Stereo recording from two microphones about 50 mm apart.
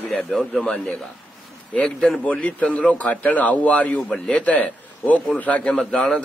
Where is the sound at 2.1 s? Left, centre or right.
Left.